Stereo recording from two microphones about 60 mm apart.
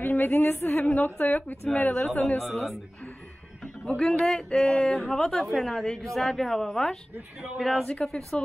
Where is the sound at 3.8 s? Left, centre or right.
Centre.